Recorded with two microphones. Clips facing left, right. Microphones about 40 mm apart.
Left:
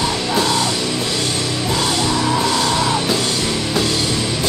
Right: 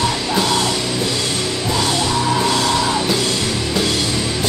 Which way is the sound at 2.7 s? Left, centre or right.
Left.